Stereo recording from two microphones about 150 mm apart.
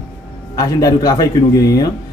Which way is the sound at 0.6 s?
25° left (ahead or behind).